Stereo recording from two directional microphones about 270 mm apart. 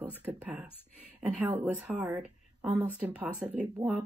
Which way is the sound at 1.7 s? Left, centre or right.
Centre.